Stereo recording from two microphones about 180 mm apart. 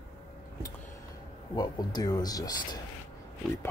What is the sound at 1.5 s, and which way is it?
Speech, 20° left (ahead or behind).